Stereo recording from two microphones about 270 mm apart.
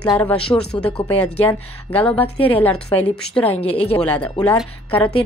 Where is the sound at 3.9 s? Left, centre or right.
Centre.